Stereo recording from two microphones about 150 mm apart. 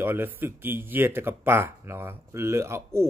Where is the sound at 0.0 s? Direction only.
15° right (ahead or behind).